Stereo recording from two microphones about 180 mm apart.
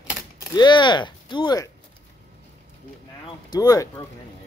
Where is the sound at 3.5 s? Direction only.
20° left (ahead or behind).